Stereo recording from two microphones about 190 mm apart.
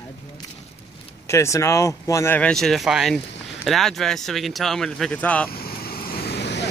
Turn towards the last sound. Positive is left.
turn(degrees=65)  # may be behind; listen again after turning